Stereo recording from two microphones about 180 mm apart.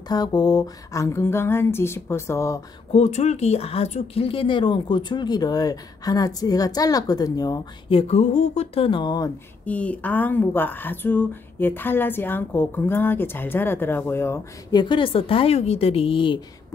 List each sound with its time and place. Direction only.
0.1 s speech: 20° left (ahead or behind)
2.9 s speech: 35° left (ahead or behind); by 7.6 s 20° left (ahead or behind)
7.9 s a woman's voice: 40° left (ahead or behind); by 9.3 s 25° left (ahead or behind)
9.7 s speech: 10° left (ahead or behind)
14.8 s a woman's voice: 25° left (ahead or behind)